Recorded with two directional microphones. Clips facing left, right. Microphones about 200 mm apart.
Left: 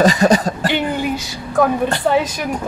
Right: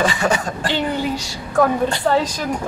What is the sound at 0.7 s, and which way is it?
Speech, 15° left (ahead or behind).